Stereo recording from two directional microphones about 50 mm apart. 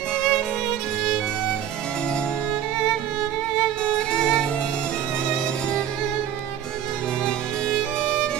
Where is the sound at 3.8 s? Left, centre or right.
Centre.